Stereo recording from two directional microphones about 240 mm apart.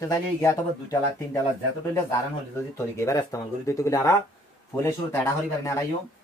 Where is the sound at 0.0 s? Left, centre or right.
Centre.